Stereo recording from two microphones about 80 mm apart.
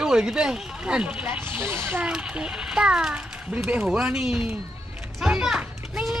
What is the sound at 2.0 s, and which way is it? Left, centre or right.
Speech, centre.